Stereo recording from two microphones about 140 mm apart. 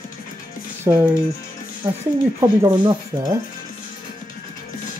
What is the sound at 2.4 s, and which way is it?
Speech, 20° right (ahead or behind).